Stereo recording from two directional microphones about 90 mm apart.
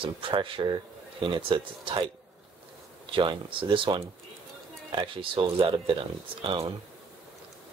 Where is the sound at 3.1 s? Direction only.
70° right (ahead or behind).